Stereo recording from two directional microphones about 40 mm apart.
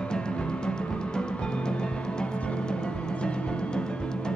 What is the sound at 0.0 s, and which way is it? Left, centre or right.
Music, left.